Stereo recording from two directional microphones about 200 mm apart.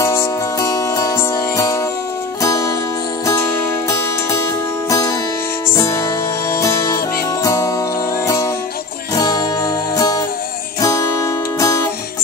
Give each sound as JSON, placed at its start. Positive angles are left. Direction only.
{"t": 0.0, "sound": "music", "side_deg": 15}
{"t": 4.8, "sound": "music", "side_deg": 15}
{"t": 6.5, "sound": "music", "side_deg": 15}
{"t": 9.1, "sound": "music", "side_deg": 20}